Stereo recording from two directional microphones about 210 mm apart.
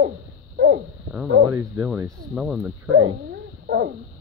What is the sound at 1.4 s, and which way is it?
Speech, 15° right (ahead or behind).